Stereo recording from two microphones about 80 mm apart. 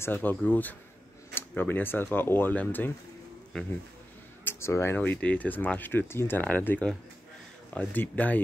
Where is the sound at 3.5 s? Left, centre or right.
Centre.